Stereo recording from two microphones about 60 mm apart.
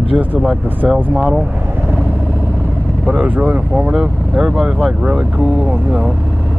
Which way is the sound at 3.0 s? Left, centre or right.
Right.